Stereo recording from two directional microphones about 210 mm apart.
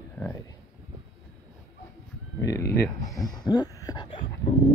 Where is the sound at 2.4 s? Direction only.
15° left (ahead or behind).